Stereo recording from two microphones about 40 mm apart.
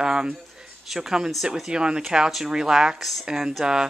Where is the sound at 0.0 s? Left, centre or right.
Centre.